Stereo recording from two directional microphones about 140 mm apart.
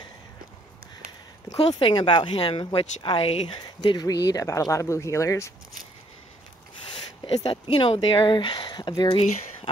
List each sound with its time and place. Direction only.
1.7 s speech: 35° left (ahead or behind)
3.8 s speech: 30° left (ahead or behind)
7.7 s speech: 35° left (ahead or behind)